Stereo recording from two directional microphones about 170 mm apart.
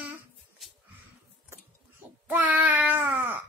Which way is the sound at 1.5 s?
10° right (ahead or behind).